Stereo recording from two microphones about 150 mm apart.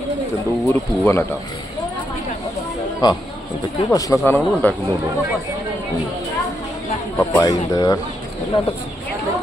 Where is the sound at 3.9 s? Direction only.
20° left (ahead or behind).